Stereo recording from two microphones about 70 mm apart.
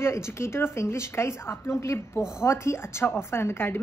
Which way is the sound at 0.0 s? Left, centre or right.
Left.